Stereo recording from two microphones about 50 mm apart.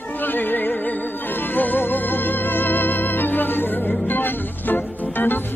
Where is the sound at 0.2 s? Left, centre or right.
Left.